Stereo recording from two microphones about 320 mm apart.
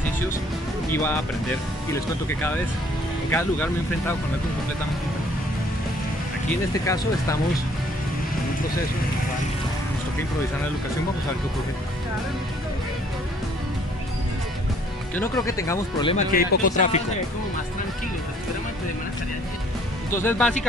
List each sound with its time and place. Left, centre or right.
0.9 s speech: centre
3.3 s speech: centre
15.1 s speech: centre
20.2 s speech: centre